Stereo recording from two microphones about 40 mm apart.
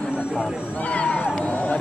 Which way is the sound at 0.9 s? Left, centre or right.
Left.